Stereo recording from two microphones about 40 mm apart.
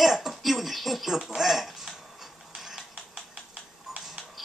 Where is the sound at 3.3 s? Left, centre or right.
Centre.